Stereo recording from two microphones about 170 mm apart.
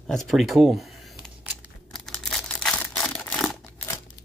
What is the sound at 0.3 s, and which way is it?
Crumpling, centre (ahead or behind).